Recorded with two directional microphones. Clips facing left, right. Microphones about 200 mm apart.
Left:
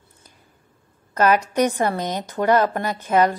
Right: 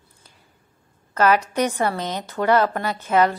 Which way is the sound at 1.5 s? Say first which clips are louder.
Left 2 dB; 15° left (ahead or behind).